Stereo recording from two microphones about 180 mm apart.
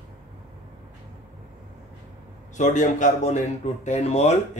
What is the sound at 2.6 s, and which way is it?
Speech, 45° left (ahead or behind).